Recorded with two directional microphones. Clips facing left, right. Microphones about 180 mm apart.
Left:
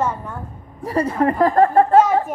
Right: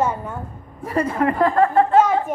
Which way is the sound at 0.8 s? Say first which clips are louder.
Left 1 dB; 35° left (ahead or behind).